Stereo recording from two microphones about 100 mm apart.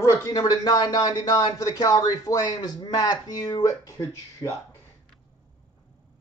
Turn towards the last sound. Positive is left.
turn(degrees=35)  # may be behind; listen again after turning